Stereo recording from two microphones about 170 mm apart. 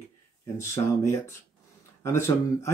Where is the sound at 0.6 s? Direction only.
15° left (ahead or behind).